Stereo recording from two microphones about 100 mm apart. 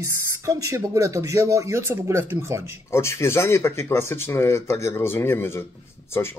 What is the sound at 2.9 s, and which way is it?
Speech, 25° left (ahead or behind).